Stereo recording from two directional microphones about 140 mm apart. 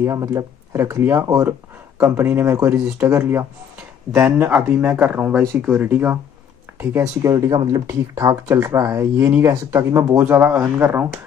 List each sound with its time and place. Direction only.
0.0 s speech: 20° right (ahead or behind)